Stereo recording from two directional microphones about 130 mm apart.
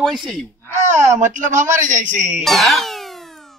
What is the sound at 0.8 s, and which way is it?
Speech, 65° right (ahead or behind).